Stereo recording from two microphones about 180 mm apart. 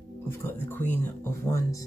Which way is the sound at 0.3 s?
15° left (ahead or behind).